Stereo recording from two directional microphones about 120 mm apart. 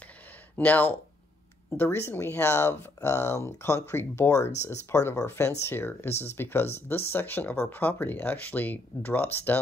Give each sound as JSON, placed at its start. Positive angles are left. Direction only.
{"t": 0.6, "sound": "speech", "side_deg": 15}